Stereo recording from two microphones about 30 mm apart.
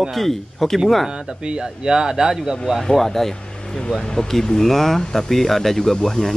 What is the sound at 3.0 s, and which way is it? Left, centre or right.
Speech, centre.